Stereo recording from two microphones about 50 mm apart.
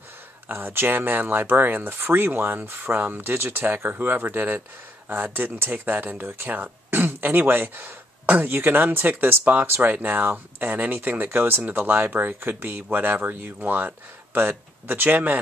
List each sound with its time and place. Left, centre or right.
0.5 s speech: right